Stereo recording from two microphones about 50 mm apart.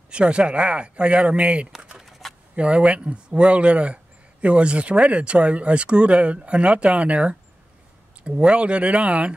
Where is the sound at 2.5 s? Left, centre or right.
Right.